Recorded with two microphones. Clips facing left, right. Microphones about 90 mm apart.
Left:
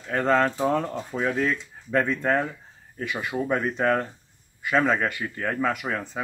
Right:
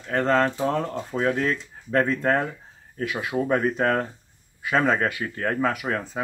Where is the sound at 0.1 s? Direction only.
5° left (ahead or behind).